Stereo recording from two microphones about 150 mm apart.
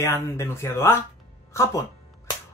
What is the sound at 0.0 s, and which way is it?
Speech, 20° left (ahead or behind).